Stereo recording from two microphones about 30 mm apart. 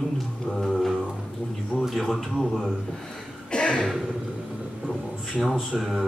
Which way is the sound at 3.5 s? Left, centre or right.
Left.